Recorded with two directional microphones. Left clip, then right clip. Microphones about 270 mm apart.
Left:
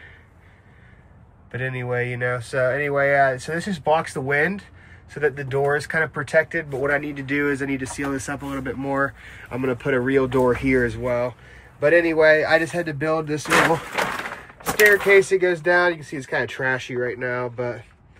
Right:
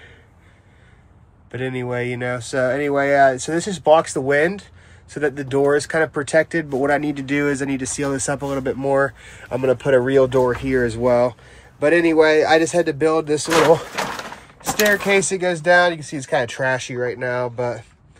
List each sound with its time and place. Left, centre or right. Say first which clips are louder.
1.5 s speech: right 1 dB; centre
10.9 s speech: right 7 dB; centre
15.0 s speech: left 2 dB; centre